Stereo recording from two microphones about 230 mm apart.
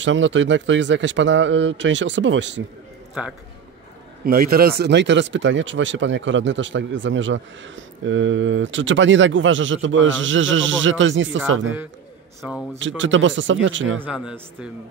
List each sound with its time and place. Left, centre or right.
0.0 s speech: right
3.2 s a man's voice: centre
4.2 s speech: right
12.4 s a man's voice: centre
12.7 s speech: right
13.9 s a man's voice: centre